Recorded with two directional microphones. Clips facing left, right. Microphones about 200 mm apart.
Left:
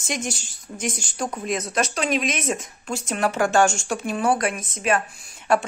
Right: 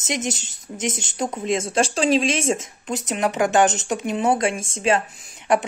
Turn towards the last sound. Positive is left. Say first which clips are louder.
# right 1 dB
turn(degrees=-20)  # may be behind; listen again after turning